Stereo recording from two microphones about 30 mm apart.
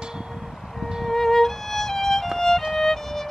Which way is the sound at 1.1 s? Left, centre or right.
Centre.